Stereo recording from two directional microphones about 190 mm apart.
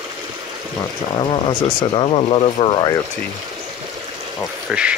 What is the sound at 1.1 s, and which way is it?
Speech, 25° left (ahead or behind).